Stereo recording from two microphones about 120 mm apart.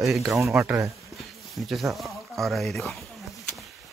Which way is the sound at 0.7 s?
15° right (ahead or behind).